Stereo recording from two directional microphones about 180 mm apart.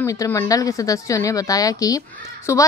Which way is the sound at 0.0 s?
15° left (ahead or behind).